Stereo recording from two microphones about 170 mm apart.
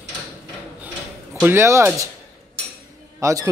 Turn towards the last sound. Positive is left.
turn(degrees=-20)  # may be behind; listen again after turning